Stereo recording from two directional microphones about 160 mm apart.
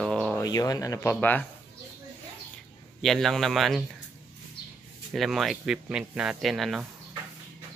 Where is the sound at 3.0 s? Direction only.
Centre (ahead or behind).